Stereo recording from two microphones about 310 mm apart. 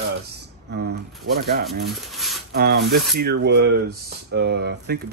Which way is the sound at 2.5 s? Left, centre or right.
Right.